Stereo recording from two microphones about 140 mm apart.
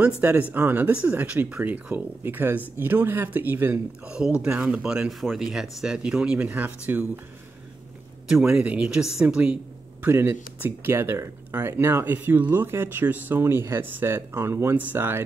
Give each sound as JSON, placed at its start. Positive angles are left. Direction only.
{"t": 0.0, "sound": "speech", "side_deg": -10}
{"t": 8.3, "sound": "speech", "side_deg": -5}